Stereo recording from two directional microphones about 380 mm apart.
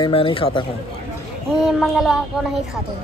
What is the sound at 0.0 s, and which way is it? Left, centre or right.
Speech, centre.